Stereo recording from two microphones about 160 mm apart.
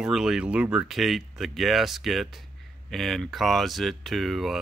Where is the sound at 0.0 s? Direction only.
5° right (ahead or behind).